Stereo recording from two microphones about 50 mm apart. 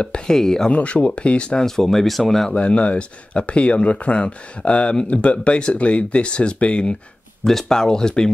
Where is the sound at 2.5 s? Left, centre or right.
Left.